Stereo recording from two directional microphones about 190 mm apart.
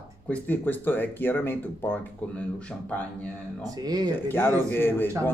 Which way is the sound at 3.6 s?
20° right (ahead or behind).